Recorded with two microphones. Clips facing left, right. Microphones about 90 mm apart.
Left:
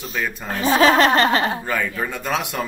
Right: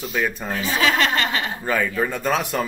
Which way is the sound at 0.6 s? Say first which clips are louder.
Left 6 dB; 45° left (ahead or behind).